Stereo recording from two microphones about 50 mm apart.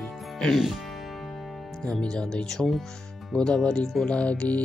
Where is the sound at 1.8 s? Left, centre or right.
Centre.